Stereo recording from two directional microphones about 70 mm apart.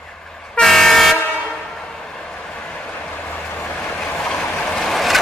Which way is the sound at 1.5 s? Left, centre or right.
Centre.